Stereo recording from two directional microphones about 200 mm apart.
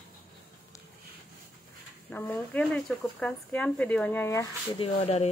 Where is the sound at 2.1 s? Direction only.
10° left (ahead or behind).